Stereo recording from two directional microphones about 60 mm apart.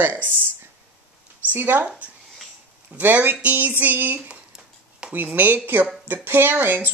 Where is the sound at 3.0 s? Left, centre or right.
Right.